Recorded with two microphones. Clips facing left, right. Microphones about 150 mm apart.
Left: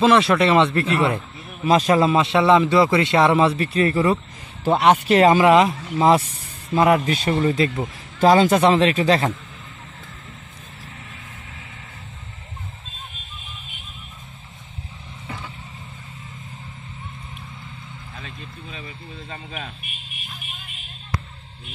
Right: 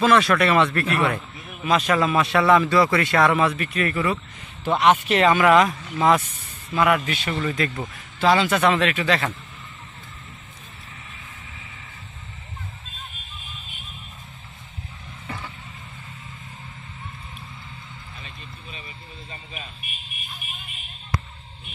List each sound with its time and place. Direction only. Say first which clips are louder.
0.0 s a man's voice: left 2 dB; 25° left (ahead or behind)
1.6 s a man's voice: left 4 dB; 35° left (ahead or behind)
8.2 s speech: left 4 dB; 40° left (ahead or behind)
15.2 s vehicle: even; 10° left (ahead or behind)
18.7 s a sound: left 5 dB; 80° left